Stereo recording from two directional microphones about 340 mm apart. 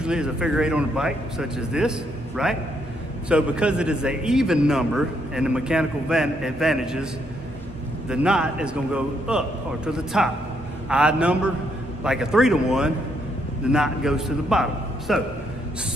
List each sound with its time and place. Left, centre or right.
0.0 s a man's voice: centre
8.1 s a man's voice: centre